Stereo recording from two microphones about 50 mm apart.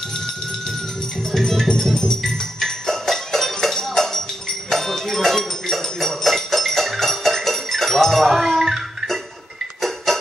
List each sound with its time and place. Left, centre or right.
1.3 s music: centre